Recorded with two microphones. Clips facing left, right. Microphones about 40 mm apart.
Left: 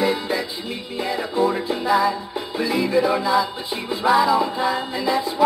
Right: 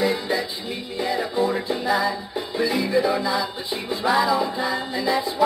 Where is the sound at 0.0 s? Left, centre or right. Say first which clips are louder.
Left 1 dB; centre.